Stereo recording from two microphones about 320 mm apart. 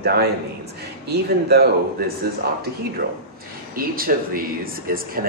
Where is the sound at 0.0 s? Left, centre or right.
Right.